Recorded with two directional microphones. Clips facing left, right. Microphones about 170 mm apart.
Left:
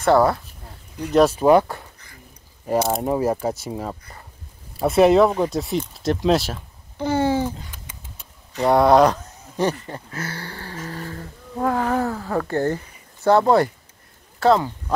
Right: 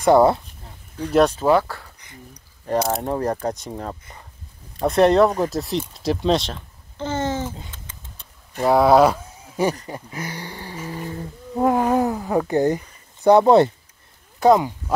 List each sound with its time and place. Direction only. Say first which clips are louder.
0.0 s speech: right 2 dB; 20° right (ahead or behind)
1.1 s speech: left 1 dB; 5° left (ahead or behind)
1.4 s speech: left 3 dB; 20° left (ahead or behind)
2.6 s speech: left 1 dB; 5° left (ahead or behind)
7.7 s a sound: left 1 dB; 10° left (ahead or behind)
8.6 s speech: even; 5° right (ahead or behind)